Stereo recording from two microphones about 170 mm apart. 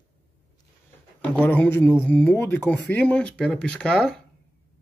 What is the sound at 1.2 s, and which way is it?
Speech, 10° left (ahead or behind).